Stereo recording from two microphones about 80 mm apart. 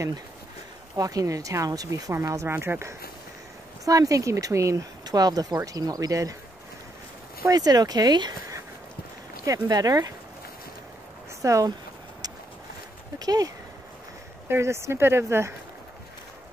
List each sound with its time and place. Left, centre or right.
0.9 s speech: right
2.4 s speech: right
3.8 s speech: right
5.0 s speech: right
7.4 s speech: right
9.5 s speech: right
11.4 s speech: right
13.2 s speech: right
14.5 s speech: right